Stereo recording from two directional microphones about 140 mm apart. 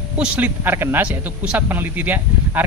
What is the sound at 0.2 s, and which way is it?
Speech, 15° right (ahead or behind).